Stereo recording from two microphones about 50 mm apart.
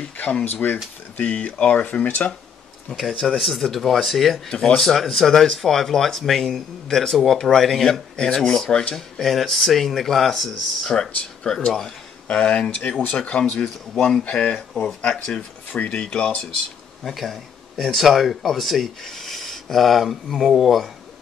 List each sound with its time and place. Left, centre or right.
0.6 s speech: left
1.6 s speech: left
2.0 s speech: left
2.9 s speech: centre
4.5 s speech: centre
14.2 s speech: left
17.0 s speech: centre